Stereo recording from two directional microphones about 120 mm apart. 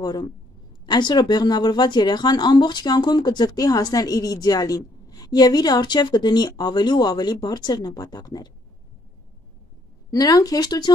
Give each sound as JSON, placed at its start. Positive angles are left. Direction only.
{"t": 0.0, "sound": "a woman's voice", "side_deg": 35}
{"t": 10.1, "sound": "a woman's voice", "side_deg": 30}